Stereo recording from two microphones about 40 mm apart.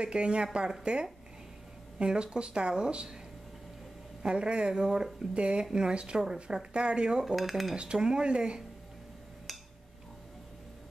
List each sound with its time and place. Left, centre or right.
0.0 s speech: right
2.0 s speech: right
4.2 s speech: right
5.3 s speech: right
7.3 s dishes: centre
7.7 s speech: right
9.5 s a sound: centre